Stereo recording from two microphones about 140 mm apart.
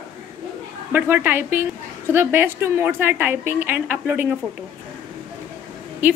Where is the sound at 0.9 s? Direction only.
15° right (ahead or behind).